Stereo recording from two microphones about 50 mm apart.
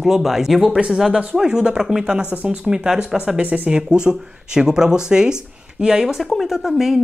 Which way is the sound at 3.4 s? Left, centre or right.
Right.